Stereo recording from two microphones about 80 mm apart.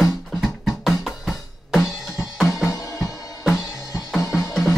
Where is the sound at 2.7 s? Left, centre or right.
Left.